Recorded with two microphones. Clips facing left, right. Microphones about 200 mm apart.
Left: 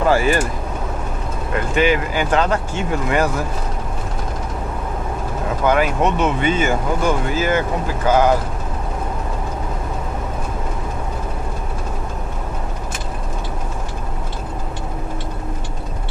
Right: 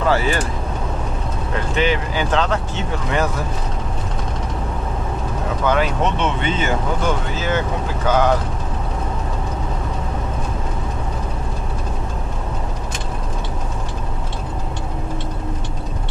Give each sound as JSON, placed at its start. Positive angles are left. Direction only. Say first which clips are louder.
{"t": 0.0, "sound": "speech", "louder": "left 2 dB", "side_deg": 10}
{"t": 1.8, "sound": "speech", "louder": "left 3 dB", "side_deg": 10}
{"t": 5.7, "sound": "speech", "louder": "left 2 dB", "side_deg": 10}